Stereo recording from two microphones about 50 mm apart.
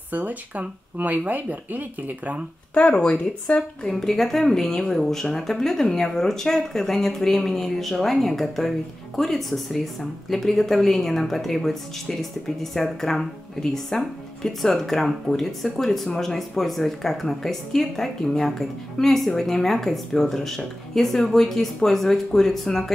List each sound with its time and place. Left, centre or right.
0.1 s speech: right
2.7 s speech: left
3.8 s speech: centre